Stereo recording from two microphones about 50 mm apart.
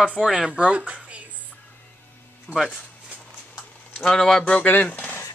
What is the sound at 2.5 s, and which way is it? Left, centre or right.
Speech, right.